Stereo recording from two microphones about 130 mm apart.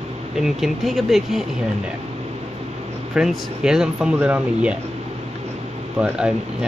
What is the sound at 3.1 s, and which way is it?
Speech, 5° right (ahead or behind).